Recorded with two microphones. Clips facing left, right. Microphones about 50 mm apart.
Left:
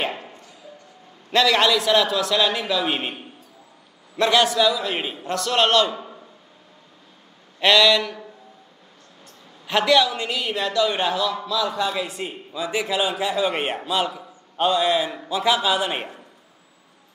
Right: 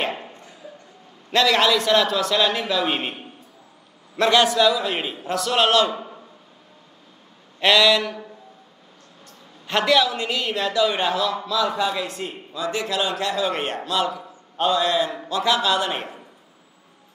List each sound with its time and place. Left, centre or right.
1.3 s a man's voice: centre
4.2 s a man's voice: centre
7.6 s a man's voice: centre
9.7 s a man's voice: centre
11.9 s a man's voice: centre